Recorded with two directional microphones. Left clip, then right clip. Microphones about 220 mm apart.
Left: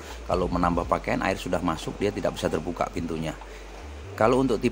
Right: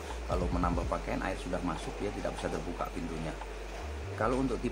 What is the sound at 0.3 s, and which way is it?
Speech, 35° left (ahead or behind).